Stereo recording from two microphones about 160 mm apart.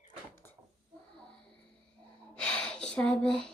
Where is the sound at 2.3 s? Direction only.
5° left (ahead or behind).